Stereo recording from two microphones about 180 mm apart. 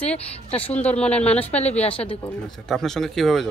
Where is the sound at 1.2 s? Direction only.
35° left (ahead or behind).